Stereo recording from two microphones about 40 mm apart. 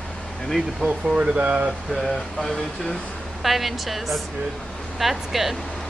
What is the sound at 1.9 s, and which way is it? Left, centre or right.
Speech, centre.